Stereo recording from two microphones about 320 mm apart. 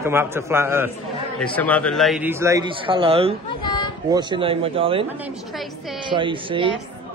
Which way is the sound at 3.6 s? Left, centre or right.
Centre.